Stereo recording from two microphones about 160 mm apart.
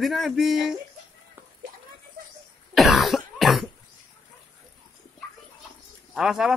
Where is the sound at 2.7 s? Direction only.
Centre (ahead or behind).